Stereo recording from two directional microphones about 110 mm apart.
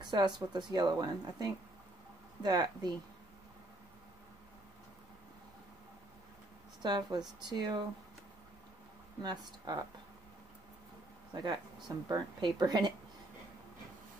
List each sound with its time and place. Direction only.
0.0 s a woman's voice: 45° right (ahead or behind)
6.8 s a woman's voice: 40° right (ahead or behind)
9.2 s a woman's voice: 40° right (ahead or behind)
11.3 s a woman's voice: 40° right (ahead or behind)